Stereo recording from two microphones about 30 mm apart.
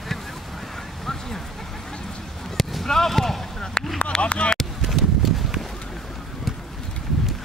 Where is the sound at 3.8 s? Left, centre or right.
Left.